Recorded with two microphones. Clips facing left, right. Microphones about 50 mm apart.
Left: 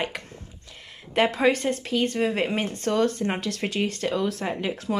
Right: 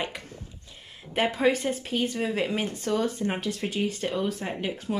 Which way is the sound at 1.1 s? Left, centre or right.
Left.